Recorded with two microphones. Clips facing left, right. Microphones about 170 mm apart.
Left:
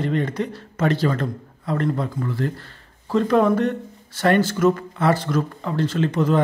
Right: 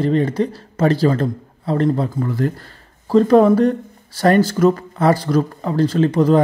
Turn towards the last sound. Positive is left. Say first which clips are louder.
# right 6 dB
turn(degrees=-35)  # may be behind; listen again after turning